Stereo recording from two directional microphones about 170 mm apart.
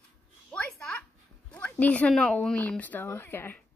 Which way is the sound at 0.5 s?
5° left (ahead or behind).